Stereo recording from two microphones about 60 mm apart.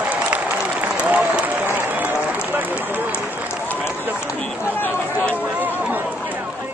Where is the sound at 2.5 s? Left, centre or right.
Right.